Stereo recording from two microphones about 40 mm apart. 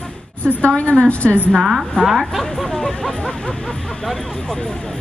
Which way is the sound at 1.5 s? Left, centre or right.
Centre.